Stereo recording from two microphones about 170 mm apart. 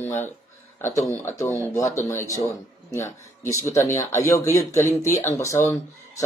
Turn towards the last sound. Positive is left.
turn(degrees=20)  # may be behind; listen again after turning